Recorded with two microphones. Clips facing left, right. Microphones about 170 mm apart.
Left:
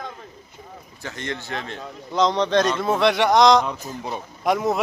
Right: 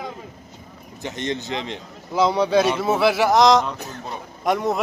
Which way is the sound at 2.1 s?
10° right (ahead or behind).